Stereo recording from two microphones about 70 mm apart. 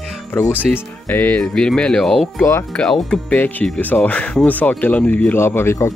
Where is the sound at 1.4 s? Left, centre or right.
Centre.